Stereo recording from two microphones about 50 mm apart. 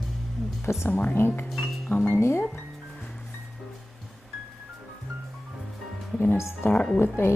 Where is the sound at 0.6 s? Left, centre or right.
Left.